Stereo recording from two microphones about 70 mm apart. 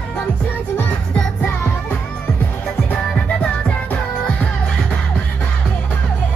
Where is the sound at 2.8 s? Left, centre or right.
Centre.